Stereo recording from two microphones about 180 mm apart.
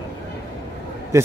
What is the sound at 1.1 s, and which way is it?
Speech, 15° right (ahead or behind).